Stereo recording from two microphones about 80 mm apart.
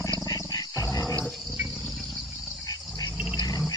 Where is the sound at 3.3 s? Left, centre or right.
Left.